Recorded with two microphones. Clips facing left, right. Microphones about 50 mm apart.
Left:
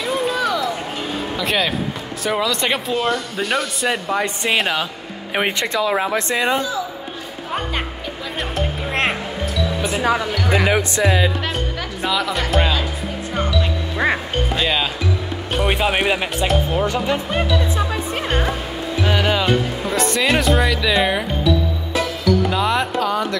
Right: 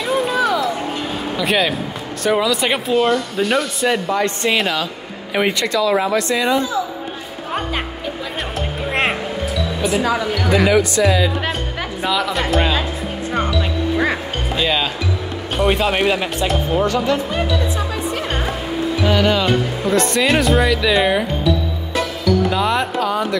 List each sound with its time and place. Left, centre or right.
0.0 s a sound: centre
1.3 s speech: centre
5.3 s speech: left
8.8 s music: centre
10.7 s speech: left
12.0 s speech: centre
14.5 s speech: centre
18.9 s speech: centre
21.9 s music: centre